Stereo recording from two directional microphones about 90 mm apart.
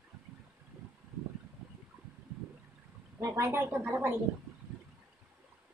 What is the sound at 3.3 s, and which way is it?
Speech, 25° right (ahead or behind).